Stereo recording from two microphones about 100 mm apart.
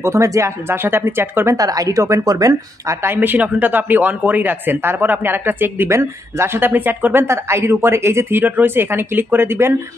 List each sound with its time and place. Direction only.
0.0 s speech: 30° right (ahead or behind)